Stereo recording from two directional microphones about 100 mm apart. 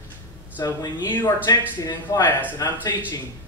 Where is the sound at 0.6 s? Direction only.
35° left (ahead or behind).